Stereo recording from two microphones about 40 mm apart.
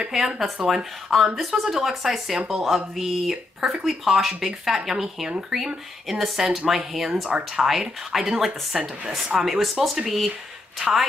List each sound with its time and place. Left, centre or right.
0.1 s speech: centre
2.3 s speech: centre
2.6 s speech: centre
7.2 s speech: right
7.6 s speech: centre